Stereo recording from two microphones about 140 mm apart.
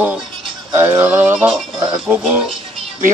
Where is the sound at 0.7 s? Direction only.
15° right (ahead or behind).